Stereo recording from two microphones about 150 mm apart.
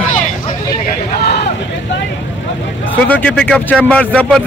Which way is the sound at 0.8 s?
90° left.